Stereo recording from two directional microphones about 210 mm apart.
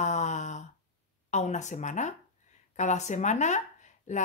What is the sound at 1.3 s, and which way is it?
Speech, 35° left (ahead or behind).